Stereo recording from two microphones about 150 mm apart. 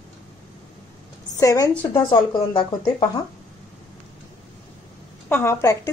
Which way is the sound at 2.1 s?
35° left (ahead or behind).